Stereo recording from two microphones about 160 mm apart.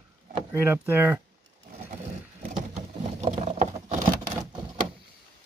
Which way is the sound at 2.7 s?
40° right (ahead or behind).